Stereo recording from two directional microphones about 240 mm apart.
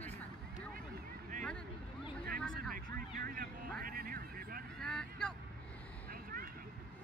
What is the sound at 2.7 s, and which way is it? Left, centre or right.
Vehicle, right.